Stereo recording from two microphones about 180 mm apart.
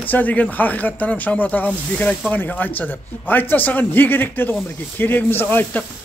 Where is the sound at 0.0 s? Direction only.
10° left (ahead or behind).